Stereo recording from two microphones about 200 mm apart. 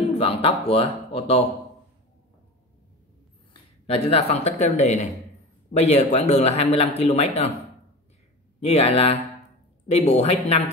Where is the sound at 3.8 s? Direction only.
30° left (ahead or behind).